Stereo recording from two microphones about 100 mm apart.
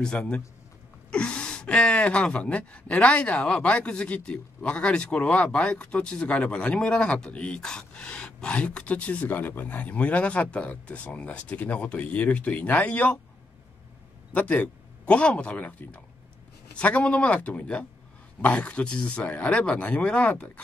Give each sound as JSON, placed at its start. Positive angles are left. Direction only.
{"t": 0.0, "sound": "speech", "side_deg": 10}
{"t": 14.3, "sound": "speech", "side_deg": 15}